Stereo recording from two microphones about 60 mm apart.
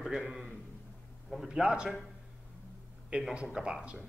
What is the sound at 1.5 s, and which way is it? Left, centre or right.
Speech, centre.